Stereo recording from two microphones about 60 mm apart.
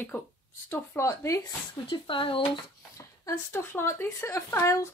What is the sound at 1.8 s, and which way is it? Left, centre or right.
Speech, left.